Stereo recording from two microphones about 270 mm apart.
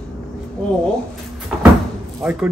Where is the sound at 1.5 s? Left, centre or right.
Centre.